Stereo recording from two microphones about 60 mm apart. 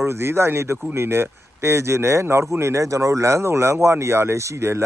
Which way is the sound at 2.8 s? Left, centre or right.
Right.